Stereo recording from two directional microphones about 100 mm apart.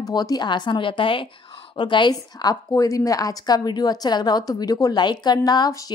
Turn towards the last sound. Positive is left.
turn(degrees=40)  # may be behind; listen again after turning